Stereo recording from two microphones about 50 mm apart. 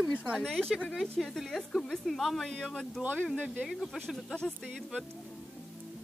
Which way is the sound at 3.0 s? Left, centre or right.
Right.